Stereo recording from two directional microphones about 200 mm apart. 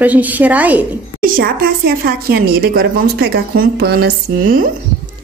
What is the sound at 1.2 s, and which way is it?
Speech, 45° right (ahead or behind).